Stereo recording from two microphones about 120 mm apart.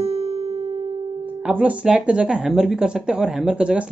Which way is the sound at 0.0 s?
55° right (ahead or behind).